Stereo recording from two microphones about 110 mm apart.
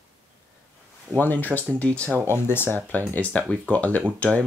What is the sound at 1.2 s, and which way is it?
Speech, 15° left (ahead or behind).